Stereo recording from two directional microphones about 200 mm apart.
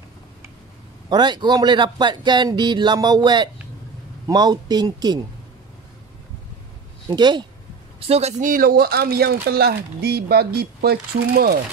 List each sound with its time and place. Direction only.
1.0 s a man's voice: 20° right (ahead or behind)
7.1 s a man's voice: 20° right (ahead or behind)
8.1 s speech: 35° right (ahead or behind); by 11.6 s 50° right (ahead or behind)